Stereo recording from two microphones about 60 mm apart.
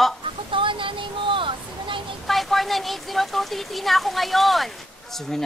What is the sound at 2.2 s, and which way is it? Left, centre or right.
Speech, centre.